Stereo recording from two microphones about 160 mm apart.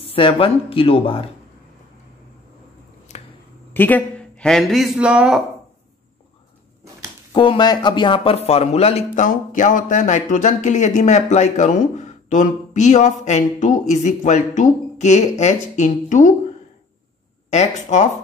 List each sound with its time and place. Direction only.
0.0 s speech: 35° left (ahead or behind)
3.7 s speech: 10° left (ahead or behind); by 5.4 s 5° right (ahead or behind)
7.3 s speech: 30° left (ahead or behind); by 16.3 s 50° left (ahead or behind)
17.5 s speech: 45° left (ahead or behind)